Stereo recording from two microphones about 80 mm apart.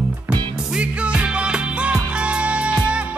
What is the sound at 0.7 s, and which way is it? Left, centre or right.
Music, centre.